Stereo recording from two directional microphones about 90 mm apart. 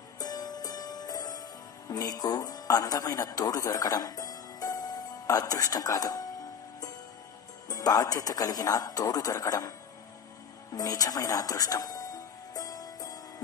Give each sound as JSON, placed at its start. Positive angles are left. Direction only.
{"t": 0.2, "sound": "music", "side_deg": 45}
{"t": 1.9, "sound": "speech", "side_deg": 45}
{"t": 7.6, "sound": "a man's voice", "side_deg": 45}
{"t": 10.7, "sound": "music", "side_deg": 45}